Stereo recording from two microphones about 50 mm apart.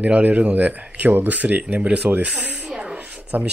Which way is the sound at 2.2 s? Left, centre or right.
Right.